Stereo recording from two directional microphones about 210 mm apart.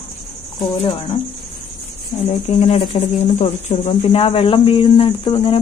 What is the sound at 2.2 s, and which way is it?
Speech, 30° left (ahead or behind).